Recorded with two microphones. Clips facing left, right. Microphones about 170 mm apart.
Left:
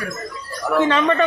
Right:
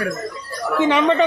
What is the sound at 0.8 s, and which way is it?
Speech, 15° right (ahead or behind).